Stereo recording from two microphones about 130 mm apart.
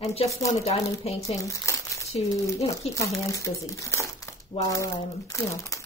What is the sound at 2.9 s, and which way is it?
Speech, 25° left (ahead or behind).